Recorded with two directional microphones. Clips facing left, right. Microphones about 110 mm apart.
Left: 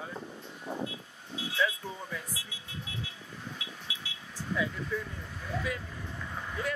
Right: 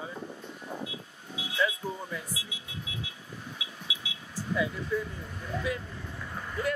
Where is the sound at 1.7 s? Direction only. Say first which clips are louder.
Right 3 dB; 5° right (ahead or behind).